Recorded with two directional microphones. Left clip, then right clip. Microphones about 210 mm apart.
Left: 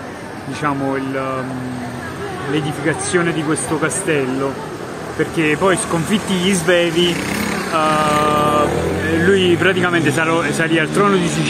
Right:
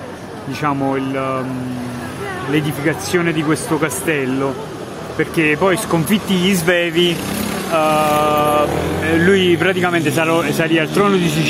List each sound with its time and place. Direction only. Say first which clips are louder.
0.6 s speech: right 1 dB; 30° right (ahead or behind)
2.5 s speech: right 1 dB; 35° right (ahead or behind)
7.3 s vehicle: even; 30° right (ahead or behind)
9.0 s speech: right 1 dB; 30° right (ahead or behind)